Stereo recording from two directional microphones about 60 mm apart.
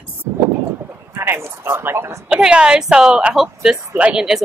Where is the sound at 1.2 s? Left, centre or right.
Right.